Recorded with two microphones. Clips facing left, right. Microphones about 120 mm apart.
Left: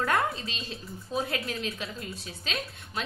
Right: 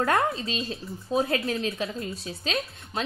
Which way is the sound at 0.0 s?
35° right (ahead or behind).